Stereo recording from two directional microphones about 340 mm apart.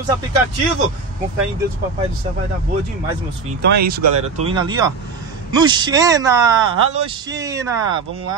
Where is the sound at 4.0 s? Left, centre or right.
Right.